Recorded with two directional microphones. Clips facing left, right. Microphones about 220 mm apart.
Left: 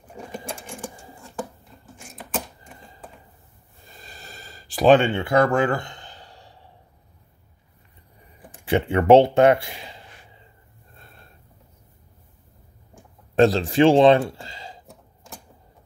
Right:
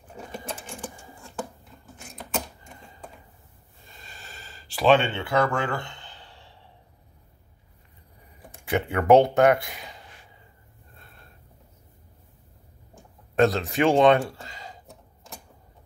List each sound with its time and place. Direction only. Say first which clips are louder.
2.0 s typewriter: left 1 dB; 5° left (ahead or behind)
3.9 s a sound: left 3 dB; 40° left (ahead or behind)
8.6 s speech: left 4 dB; 30° left (ahead or behind)
13.4 s speech: left 5 dB; 30° left (ahead or behind)